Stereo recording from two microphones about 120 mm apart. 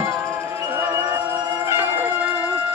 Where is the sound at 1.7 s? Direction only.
20° right (ahead or behind).